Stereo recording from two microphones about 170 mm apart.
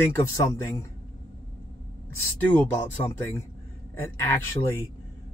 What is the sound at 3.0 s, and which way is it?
Speech, 15° left (ahead or behind).